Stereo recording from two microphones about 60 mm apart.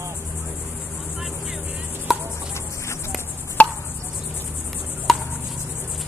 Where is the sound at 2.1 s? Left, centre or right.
Centre.